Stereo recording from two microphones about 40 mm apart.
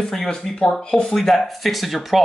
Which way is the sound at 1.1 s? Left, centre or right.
Centre.